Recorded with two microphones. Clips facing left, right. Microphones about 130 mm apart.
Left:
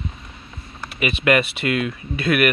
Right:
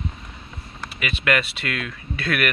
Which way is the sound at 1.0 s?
15° left (ahead or behind).